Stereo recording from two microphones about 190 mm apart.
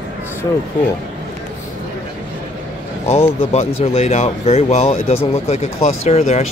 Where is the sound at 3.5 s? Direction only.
35° left (ahead or behind).